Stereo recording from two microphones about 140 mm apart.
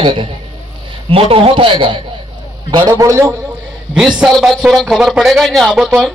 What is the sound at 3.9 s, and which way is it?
A man's voice, 5° right (ahead or behind).